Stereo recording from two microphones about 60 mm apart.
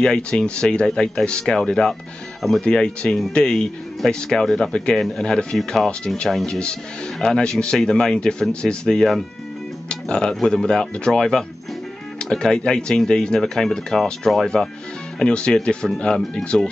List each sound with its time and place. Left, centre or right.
0.0 s speech: centre